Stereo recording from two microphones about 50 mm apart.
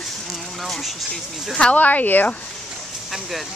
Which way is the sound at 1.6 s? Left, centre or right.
Left.